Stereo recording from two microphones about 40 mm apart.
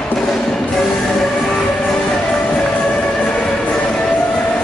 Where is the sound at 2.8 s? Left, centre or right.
Left.